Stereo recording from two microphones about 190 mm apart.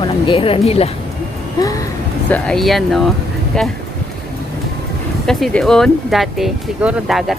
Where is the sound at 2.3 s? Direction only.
5° left (ahead or behind).